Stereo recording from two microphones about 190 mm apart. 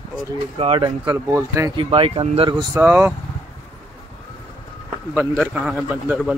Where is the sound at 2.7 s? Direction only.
10° right (ahead or behind).